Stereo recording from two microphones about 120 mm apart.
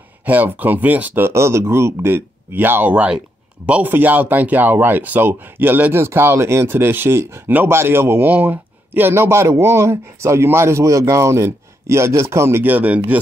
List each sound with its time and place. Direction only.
0.2 s speech: 15° right (ahead or behind)